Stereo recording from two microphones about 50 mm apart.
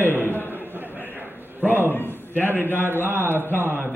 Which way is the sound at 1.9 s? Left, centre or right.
Left.